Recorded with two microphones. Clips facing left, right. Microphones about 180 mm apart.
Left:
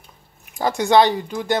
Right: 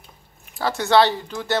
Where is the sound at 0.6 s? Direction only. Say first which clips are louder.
Left 2 dB; 15° left (ahead or behind).